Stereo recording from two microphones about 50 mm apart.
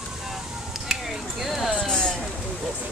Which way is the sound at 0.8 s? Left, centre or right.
Centre.